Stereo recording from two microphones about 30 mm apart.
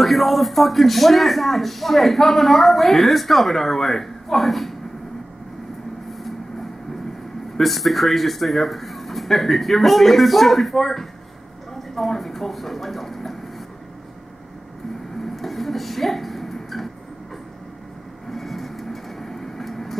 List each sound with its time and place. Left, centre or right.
0.0 s a man's voice: centre
7.5 s a man's voice: centre
15.2 s a sound: centre
18.3 s vehicle: centre